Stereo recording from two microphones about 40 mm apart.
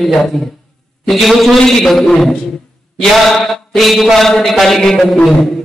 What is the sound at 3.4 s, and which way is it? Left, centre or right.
Mantra, centre.